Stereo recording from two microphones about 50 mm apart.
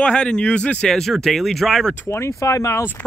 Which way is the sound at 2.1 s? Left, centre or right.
Left.